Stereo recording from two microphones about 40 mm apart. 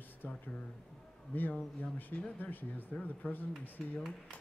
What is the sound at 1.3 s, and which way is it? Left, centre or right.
Speech, left.